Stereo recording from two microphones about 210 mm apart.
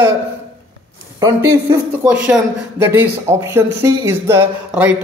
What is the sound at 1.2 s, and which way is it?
Speech, 15° right (ahead or behind).